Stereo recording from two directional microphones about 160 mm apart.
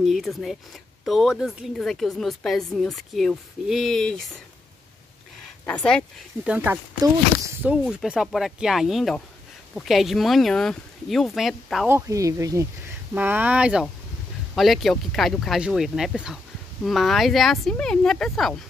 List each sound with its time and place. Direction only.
0.0 s speech: centre (ahead or behind)
5.7 s speech: 5° left (ahead or behind)
6.4 s speech: 10° right (ahead or behind)
11.9 s speech: 20° right (ahead or behind); by 18.6 s centre (ahead or behind)